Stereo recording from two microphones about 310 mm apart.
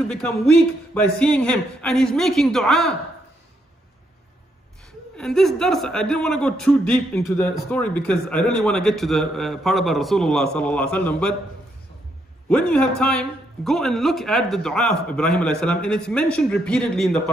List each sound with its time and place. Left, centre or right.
0.9 s a man's voice: centre
5.1 s a man's voice: centre
12.4 s a man's voice: centre